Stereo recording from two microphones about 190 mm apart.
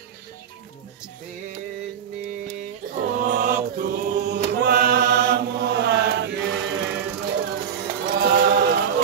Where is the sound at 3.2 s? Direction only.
45° right (ahead or behind); by 6.3 s 65° right (ahead or behind).